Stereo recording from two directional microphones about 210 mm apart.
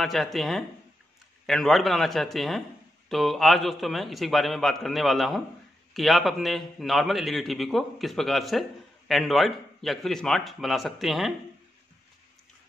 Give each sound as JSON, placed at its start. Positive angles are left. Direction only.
{"t": 0.0, "sound": "a man's voice", "side_deg": 0}